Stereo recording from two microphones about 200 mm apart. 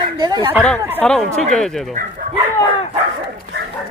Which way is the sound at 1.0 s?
5° left (ahead or behind).